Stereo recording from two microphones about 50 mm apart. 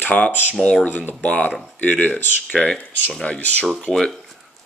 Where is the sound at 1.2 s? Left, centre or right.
Left.